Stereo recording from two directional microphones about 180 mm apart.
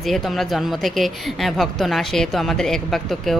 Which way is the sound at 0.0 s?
Centre (ahead or behind).